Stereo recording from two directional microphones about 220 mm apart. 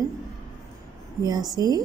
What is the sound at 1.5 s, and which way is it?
Speech, 15° right (ahead or behind).